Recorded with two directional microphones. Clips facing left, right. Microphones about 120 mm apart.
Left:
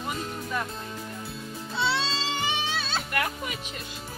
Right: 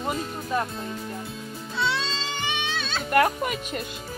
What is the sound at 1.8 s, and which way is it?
Music, 30° left (ahead or behind).